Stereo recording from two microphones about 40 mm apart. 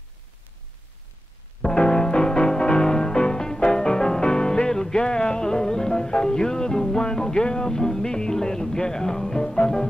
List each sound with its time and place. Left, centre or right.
1.6 s music: centre